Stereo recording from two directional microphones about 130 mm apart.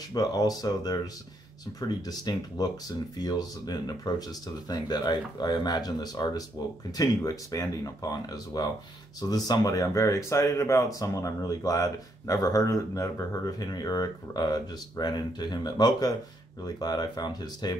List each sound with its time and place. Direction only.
0.1 s speech: 30° left (ahead or behind)